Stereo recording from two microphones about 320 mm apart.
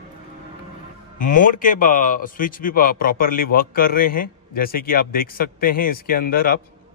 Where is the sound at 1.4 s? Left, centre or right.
Left.